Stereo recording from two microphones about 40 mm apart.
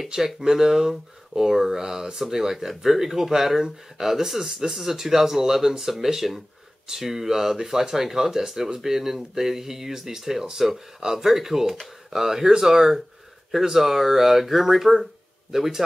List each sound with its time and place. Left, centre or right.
0.4 s speech: centre